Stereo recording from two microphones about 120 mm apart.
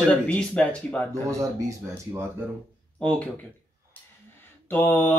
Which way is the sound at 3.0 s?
10° left (ahead or behind).